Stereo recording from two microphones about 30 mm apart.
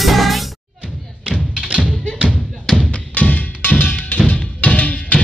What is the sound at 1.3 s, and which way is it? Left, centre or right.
Music, right.